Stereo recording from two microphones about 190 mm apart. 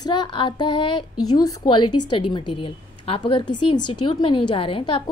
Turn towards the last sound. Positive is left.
turn(degrees=25)  # may be behind; listen again after turning